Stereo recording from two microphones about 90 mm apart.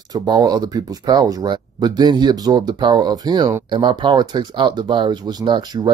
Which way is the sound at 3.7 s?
55° right (ahead or behind).